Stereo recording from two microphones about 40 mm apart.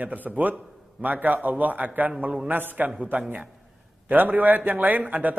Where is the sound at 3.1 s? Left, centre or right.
Right.